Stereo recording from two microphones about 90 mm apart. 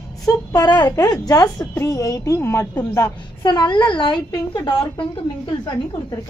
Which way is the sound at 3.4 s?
60° left (ahead or behind).